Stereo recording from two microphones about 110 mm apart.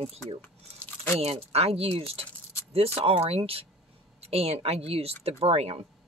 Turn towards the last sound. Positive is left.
turn(degrees=-70)  # may be behind; listen again after turning